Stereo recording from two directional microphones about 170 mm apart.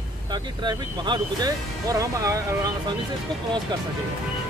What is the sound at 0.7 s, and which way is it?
Speech, 25° right (ahead or behind).